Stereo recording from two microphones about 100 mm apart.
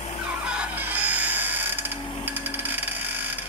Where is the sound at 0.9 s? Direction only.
15° right (ahead or behind).